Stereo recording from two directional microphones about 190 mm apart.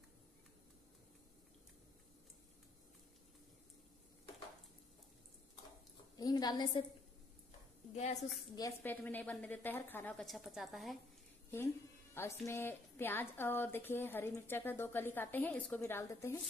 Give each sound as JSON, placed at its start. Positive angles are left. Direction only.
{"t": 6.1, "sound": "a sound", "side_deg": 20}
{"t": 7.9, "sound": "a woman's voice", "side_deg": 35}
{"t": 8.5, "sound": "speech", "side_deg": 15}
{"t": 11.5, "sound": "speech", "side_deg": 10}